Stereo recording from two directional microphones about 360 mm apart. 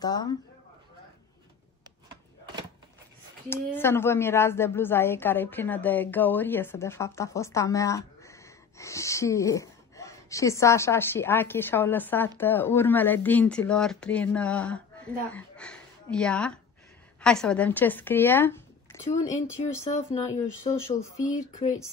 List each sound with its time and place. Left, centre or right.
0.0 s a woman's voice: centre
2.0 s a sound: centre
3.4 s a woman's voice: centre
19.0 s speech: centre
19.4 s a woman's voice: centre
21.5 s speech: left